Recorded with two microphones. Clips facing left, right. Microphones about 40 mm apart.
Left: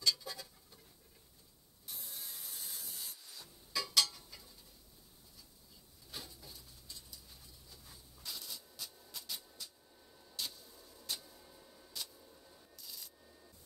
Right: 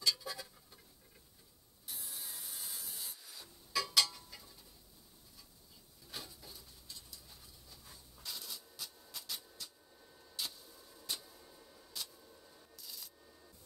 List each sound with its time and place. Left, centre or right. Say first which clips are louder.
0.0 s a sound: even; centre
1.9 s rub: right 1 dB; centre
6.0 s bird: right 1 dB; centre